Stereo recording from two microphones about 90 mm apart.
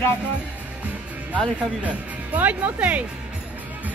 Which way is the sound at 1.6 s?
15° right (ahead or behind).